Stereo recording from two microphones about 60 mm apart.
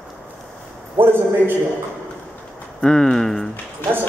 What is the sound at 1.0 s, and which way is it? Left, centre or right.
Speech, right.